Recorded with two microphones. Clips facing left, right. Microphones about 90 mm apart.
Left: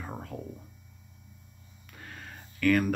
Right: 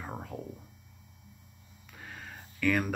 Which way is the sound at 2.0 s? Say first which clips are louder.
Even; 5° right (ahead or behind).